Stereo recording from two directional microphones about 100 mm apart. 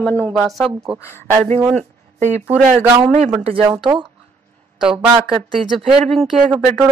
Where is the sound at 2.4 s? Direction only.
20° right (ahead or behind).